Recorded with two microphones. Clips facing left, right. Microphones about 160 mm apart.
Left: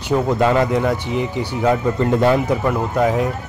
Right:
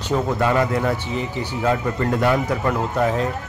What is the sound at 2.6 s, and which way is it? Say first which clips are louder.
Speech: left 3 dB; 10° left (ahead or behind).